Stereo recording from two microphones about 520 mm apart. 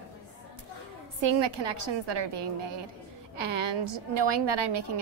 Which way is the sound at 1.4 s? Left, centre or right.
Right.